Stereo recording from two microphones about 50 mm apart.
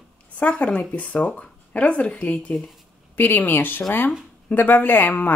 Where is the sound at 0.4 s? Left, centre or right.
Left.